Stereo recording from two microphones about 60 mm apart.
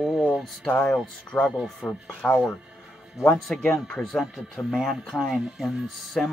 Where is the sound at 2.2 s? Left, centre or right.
Centre.